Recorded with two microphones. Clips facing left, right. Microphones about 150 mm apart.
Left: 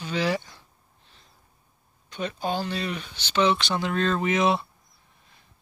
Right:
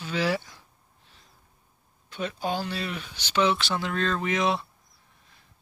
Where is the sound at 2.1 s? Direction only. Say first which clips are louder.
Left 1 dB; 5° right (ahead or behind).